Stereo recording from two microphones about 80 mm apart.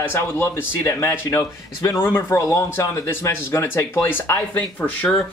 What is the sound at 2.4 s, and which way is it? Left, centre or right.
Speech, left.